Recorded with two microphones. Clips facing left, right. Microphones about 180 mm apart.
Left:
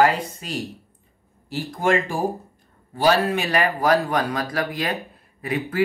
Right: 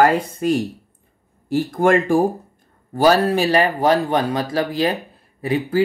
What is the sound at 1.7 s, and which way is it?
Speech, 55° right (ahead or behind).